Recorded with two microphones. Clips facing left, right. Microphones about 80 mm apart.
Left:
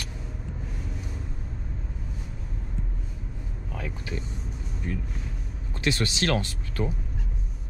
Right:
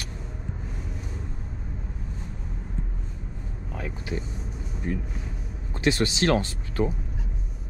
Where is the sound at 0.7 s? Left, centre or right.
Centre.